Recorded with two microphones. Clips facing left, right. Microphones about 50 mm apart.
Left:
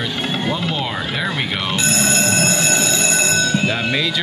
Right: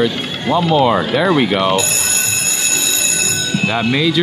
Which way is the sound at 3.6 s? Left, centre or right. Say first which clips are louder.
Right 3 dB; centre.